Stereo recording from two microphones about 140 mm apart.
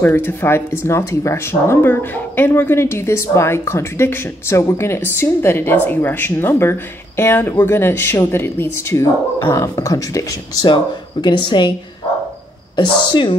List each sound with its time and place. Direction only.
0.0 s speech: 15° left (ahead or behind); by 11.7 s 35° left (ahead or behind)
12.7 s speech: 35° left (ahead or behind)